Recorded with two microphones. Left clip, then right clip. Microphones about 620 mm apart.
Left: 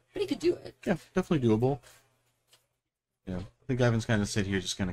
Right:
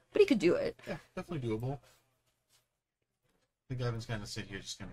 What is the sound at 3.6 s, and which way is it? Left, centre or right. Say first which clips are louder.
Speech: left 12 dB; left.